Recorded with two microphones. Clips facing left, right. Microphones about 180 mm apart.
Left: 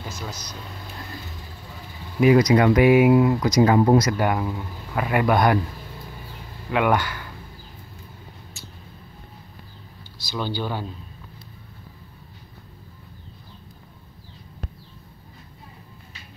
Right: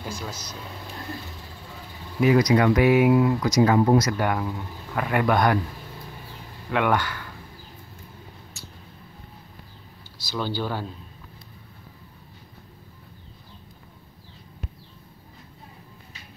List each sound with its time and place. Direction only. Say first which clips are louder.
0.2 s speech: even; 5° right (ahead or behind)
2.3 s speech: left 1 dB; 25° left (ahead or behind)
4.0 s a man's voice: left 2 dB; 10° left (ahead or behind)
6.7 s a man's voice: left 2 dB; 10° left (ahead or behind)
10.1 s speech: even; 5° right (ahead or behind)